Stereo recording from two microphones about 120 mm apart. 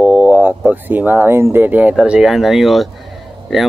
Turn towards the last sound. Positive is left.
turn(degrees=-5)  # may be behind; listen again after turning